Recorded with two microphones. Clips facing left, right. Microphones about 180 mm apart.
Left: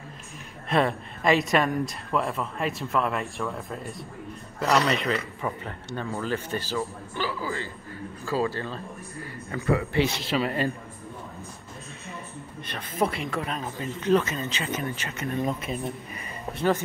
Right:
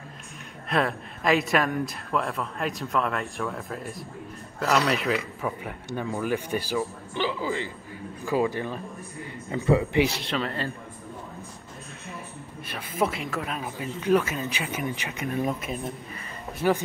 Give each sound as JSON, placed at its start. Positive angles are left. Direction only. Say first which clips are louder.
{"t": 0.7, "sound": "speech", "louder": "left 2 dB", "side_deg": 0}
{"t": 10.0, "sound": "speech", "louder": "left 2 dB", "side_deg": 0}
{"t": 12.6, "sound": "speech", "louder": "even", "side_deg": -5}